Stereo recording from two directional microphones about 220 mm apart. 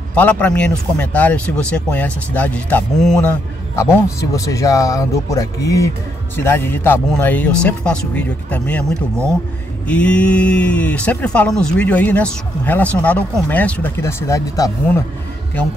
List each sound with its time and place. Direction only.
0.1 s speech: 5° left (ahead or behind)
9.8 s speech: 5° left (ahead or behind)